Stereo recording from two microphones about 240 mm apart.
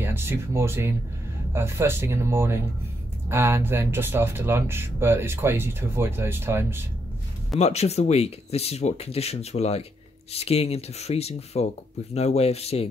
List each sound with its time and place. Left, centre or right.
0.0 s speech: centre
7.5 s speech: left